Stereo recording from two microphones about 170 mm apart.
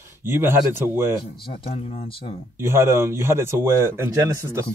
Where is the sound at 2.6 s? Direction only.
15° right (ahead or behind).